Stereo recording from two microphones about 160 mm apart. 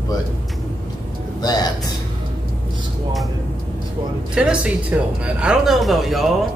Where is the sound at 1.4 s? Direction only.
25° left (ahead or behind).